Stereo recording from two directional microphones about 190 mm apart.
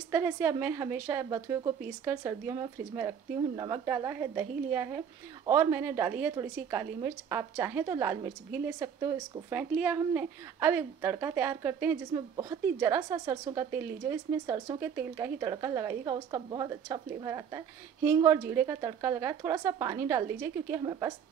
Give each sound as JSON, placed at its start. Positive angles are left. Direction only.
{"t": 0.1, "sound": "a woman's voice", "side_deg": -10}
{"t": 20.8, "sound": "a woman's voice", "side_deg": -25}